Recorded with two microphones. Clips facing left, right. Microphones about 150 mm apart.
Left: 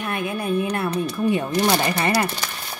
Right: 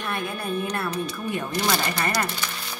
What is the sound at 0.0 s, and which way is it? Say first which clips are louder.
Speech: left 4 dB; 10° left (ahead or behind).